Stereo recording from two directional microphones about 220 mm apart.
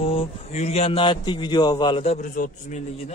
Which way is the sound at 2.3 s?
35° left (ahead or behind).